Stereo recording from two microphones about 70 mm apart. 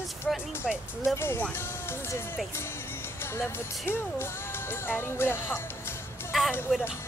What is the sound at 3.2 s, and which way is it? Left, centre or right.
Speech, left.